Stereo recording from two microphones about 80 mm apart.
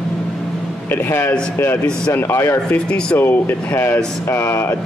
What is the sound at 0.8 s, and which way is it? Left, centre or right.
Speech, left.